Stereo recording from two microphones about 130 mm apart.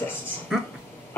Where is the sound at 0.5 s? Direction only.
5° right (ahead or behind).